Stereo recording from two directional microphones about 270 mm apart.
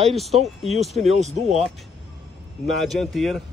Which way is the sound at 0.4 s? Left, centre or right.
Right.